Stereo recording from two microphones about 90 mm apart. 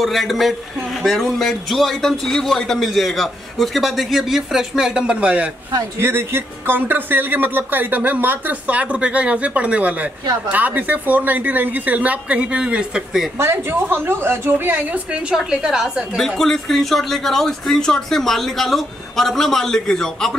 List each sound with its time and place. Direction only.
0.0 s a man's voice: centre (ahead or behind)
5.9 s speech: 25° right (ahead or behind); by 13.3 s 5° right (ahead or behind)
13.4 s speech: 30° right (ahead or behind); by 16.2 s 10° right (ahead or behind)
16.2 s a man's voice: 5° left (ahead or behind)